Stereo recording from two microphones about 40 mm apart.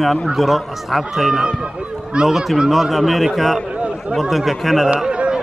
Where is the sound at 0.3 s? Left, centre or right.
Centre.